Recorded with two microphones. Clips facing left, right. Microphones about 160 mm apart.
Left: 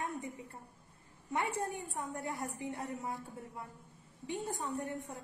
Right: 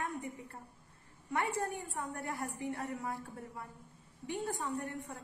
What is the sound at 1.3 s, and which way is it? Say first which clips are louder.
A woman's voice: right 1 dB; 20° left (ahead or behind).